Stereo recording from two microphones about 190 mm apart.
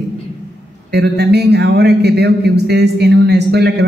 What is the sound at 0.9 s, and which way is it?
A man's voice, 60° right (ahead or behind).